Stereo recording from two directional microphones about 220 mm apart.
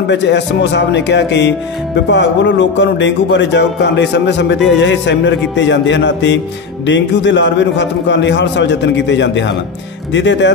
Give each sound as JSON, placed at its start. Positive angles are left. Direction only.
{"t": 0.1, "sound": "a man's voice", "side_deg": 55}
{"t": 4.7, "sound": "music", "side_deg": 55}
{"t": 6.9, "sound": "a man's voice", "side_deg": 55}